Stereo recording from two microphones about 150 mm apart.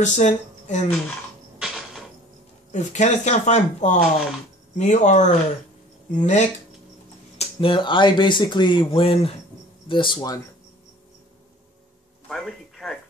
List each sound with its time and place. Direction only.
0.0 s speech: 50° left (ahead or behind)
1.6 s a sound: centre (ahead or behind)
2.7 s speech: 50° left (ahead or behind)
7.3 s speech: 35° left (ahead or behind)
12.3 s a man's voice: 5° left (ahead or behind)